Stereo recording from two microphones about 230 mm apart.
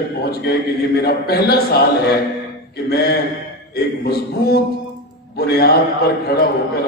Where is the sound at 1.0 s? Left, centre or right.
Left.